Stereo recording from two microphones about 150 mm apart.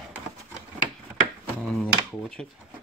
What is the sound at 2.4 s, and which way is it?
Speech, 5° left (ahead or behind).